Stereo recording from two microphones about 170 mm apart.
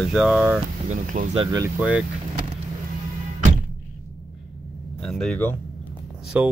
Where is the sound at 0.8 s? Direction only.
45° right (ahead or behind).